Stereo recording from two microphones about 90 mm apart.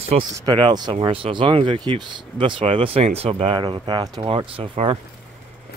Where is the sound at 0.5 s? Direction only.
55° right (ahead or behind).